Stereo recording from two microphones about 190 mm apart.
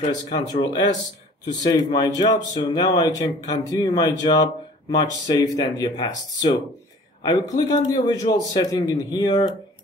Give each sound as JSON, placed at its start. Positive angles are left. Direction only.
{"t": 0.3, "sound": "speech", "side_deg": 20}